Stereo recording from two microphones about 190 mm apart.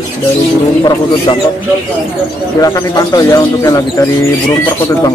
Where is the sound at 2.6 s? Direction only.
20° left (ahead or behind).